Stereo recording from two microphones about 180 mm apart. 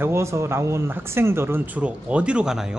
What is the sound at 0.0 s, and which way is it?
Speech, 15° right (ahead or behind).